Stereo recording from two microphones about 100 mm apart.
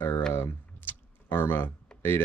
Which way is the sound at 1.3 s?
20° left (ahead or behind).